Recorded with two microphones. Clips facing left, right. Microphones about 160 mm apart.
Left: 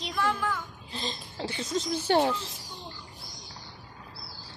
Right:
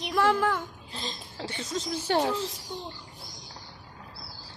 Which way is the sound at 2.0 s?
Centre (ahead or behind).